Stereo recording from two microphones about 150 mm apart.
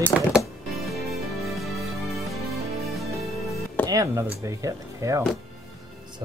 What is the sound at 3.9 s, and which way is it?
Speech, 20° right (ahead or behind).